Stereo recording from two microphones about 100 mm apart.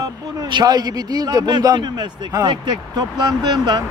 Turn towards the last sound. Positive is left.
turn(degrees=-40)  # may be behind; listen again after turning